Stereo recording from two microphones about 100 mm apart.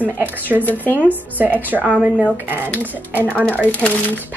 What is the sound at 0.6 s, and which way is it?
Speech, 20° left (ahead or behind).